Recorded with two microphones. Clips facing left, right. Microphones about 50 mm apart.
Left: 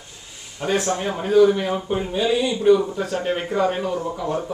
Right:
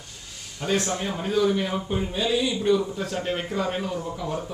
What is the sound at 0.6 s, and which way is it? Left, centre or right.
Speech, centre.